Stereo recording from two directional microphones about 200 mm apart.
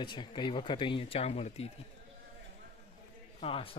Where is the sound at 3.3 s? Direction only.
25° left (ahead or behind).